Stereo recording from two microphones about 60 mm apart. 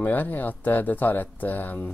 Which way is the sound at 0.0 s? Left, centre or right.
Left.